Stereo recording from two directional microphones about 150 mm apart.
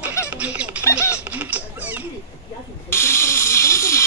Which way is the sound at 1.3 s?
10° right (ahead or behind).